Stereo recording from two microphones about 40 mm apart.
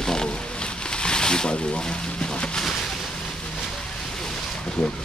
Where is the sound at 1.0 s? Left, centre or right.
Left.